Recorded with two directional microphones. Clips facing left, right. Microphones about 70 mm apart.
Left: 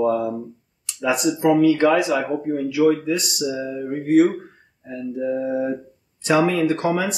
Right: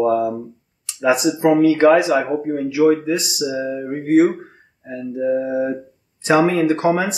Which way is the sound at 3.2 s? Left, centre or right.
Centre.